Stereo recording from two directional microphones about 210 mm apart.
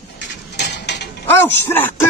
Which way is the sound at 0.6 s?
55° left (ahead or behind).